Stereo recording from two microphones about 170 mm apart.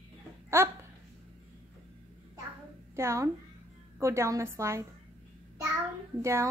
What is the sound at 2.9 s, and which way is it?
A child's voice, 15° right (ahead or behind).